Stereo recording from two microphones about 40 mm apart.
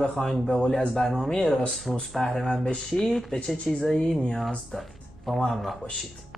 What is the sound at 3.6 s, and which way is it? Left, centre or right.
Speech, centre.